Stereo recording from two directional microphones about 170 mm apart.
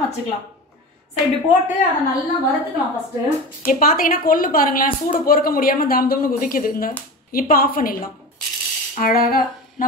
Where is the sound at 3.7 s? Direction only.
55° left (ahead or behind).